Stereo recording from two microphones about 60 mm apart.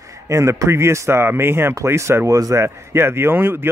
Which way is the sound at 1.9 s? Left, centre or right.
Right.